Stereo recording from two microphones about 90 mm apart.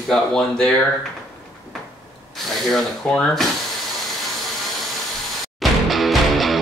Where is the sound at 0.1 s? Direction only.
10° left (ahead or behind).